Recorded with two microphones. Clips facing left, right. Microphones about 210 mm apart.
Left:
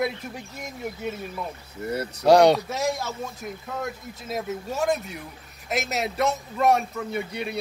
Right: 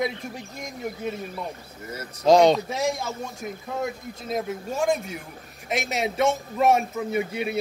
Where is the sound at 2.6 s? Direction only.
Centre (ahead or behind).